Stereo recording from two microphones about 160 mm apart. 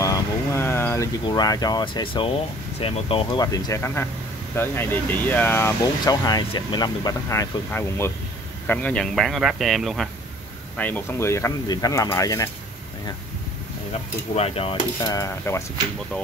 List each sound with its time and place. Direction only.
0.0 s vehicle: 20° left (ahead or behind)
1.3 s speech: 25° left (ahead or behind)
3.5 s speech: 20° left (ahead or behind)
8.6 s speech: 5° left (ahead or behind)
10.8 s speech: 10° left (ahead or behind)
14.3 s speech: 40° left (ahead or behind)
15.0 s speech: 20° left (ahead or behind)